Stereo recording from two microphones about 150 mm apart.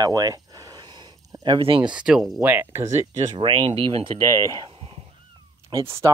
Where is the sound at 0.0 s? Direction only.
25° right (ahead or behind).